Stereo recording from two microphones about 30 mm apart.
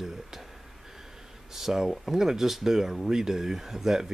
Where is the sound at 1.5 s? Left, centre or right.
Centre.